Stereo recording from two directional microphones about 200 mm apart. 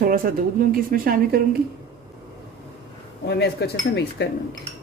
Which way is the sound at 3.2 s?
55° left (ahead or behind).